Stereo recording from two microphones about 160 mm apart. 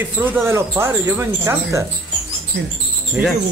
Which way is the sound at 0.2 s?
15° right (ahead or behind).